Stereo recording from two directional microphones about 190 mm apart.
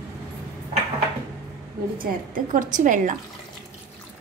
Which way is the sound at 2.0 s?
45° right (ahead or behind).